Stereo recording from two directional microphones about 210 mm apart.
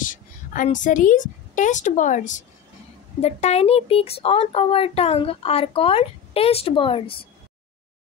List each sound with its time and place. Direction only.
0.0 s a woman's voice: 40° left (ahead or behind)